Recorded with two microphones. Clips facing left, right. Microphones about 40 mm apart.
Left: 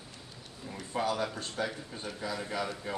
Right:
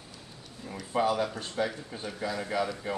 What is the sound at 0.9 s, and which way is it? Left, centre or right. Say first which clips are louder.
Speech: right 4 dB; centre.